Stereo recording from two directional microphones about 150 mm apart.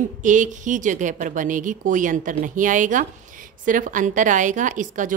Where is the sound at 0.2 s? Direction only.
55° right (ahead or behind).